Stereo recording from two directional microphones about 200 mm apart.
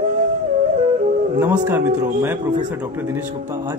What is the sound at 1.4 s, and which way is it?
Speech, 10° right (ahead or behind).